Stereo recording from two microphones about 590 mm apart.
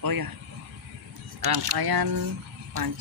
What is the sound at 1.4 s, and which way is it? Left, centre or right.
Speech, right.